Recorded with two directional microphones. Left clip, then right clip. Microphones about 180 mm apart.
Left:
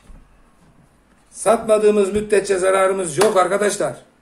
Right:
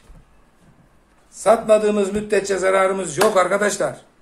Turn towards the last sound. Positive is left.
turn(degrees=0)  # may be behind; listen again after turning